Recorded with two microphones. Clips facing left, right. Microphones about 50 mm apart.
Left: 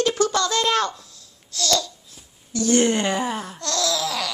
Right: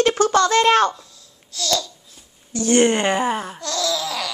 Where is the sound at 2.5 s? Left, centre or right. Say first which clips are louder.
Right 2 dB; right.